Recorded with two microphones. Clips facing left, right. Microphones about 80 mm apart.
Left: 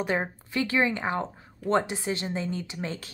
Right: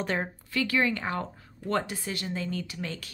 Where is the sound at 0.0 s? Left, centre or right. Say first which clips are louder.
Left 2 dB; centre.